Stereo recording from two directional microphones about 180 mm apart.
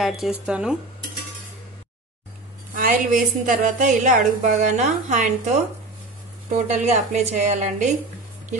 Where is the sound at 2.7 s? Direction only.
50° right (ahead or behind).